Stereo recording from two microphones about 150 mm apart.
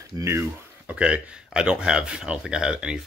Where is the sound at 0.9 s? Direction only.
10° right (ahead or behind).